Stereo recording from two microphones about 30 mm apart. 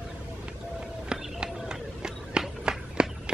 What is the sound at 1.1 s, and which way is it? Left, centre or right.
Run, right.